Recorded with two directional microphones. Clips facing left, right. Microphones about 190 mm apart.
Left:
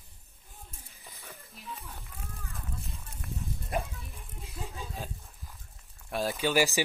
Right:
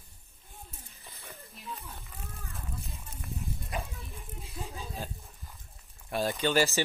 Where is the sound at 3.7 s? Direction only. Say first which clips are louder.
Left 5 dB; 50° left (ahead or behind).